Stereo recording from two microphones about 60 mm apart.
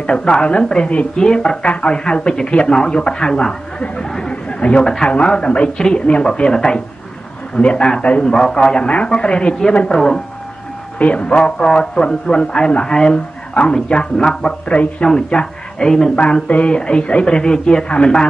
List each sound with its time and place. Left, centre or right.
0.0 s speech: centre
4.8 s speech: centre
11.0 s speech: left